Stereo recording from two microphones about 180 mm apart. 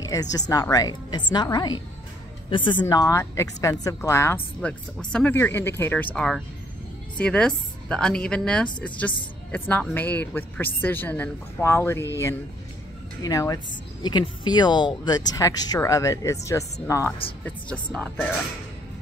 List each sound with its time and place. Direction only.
0.0 s a woman's voice: 20° left (ahead or behind)
4.6 s a woman's voice: 5° left (ahead or behind)
13.2 s a woman's voice: 20° left (ahead or behind)
17.9 s a woman's voice: 5° left (ahead or behind)